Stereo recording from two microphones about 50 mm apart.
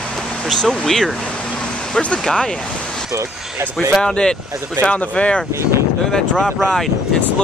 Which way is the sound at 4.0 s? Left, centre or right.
Centre.